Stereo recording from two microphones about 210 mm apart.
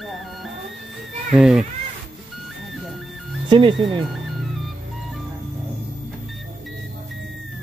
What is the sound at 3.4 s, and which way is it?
Speech, 25° right (ahead or behind).